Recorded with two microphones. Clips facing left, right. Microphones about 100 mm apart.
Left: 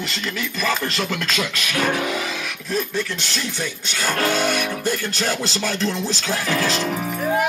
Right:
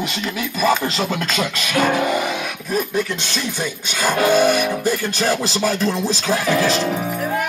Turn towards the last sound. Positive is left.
turn(degrees=-10)  # may be behind; listen again after turning